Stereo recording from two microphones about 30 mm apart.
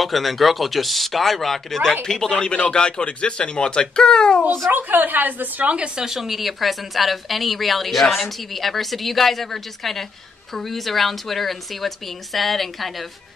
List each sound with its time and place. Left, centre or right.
0.0 s a woman's voice: centre
2.0 s speech: centre
4.6 s a woman's voice: right
6.0 s a woman's voice: centre